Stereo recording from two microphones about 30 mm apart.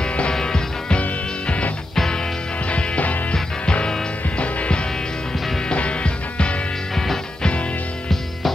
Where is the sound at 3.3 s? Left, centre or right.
Left.